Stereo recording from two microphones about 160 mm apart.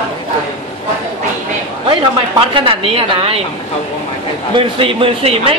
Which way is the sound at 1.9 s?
30° right (ahead or behind).